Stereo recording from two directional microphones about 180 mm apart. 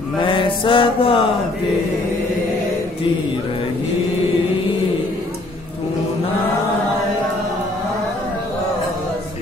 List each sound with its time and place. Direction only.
0.2 s mantra: 25° left (ahead or behind)